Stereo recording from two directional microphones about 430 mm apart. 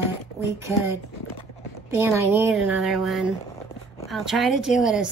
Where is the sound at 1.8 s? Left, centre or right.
Centre.